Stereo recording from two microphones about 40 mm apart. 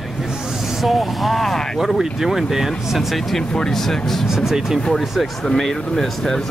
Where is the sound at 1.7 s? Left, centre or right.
Centre.